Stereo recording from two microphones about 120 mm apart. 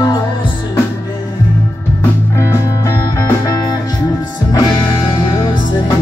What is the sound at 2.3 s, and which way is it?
Music, 25° left (ahead or behind).